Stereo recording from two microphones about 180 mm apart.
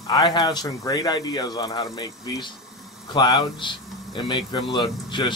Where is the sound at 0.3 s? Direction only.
25° left (ahead or behind).